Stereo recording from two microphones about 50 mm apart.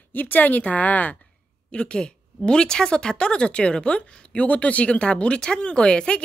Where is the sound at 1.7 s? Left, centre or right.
Centre.